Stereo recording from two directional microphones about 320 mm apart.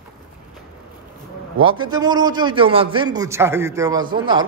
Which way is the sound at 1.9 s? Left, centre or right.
Centre.